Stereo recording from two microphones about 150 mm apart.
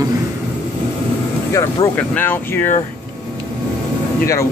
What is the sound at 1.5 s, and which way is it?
Speech, 15° left (ahead or behind).